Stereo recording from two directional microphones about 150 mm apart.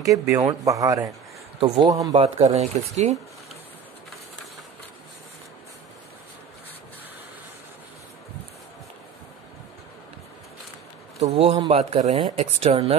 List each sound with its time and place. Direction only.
0.0 s speech: 20° right (ahead or behind)
1.6 s speech: 35° right (ahead or behind)
11.3 s a man's voice: 40° right (ahead or behind)